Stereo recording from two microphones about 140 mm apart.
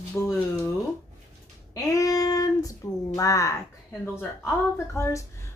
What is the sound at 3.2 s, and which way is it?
Speech, 25° left (ahead or behind).